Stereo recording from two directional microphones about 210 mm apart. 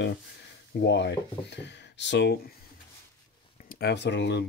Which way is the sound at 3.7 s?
50° left (ahead or behind).